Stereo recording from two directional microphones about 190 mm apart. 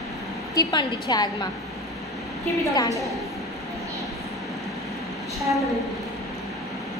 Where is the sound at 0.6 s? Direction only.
20° left (ahead or behind).